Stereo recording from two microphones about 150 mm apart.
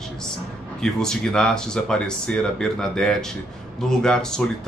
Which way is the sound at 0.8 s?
5° left (ahead or behind).